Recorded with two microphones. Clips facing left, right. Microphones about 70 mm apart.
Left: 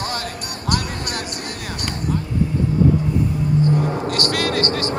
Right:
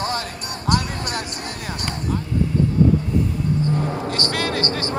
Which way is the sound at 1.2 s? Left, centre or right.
Left.